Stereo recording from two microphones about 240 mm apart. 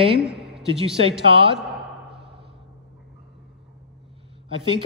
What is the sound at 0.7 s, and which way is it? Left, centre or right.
Speech, right.